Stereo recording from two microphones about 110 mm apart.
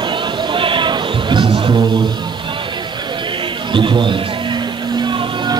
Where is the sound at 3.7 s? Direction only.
45° right (ahead or behind).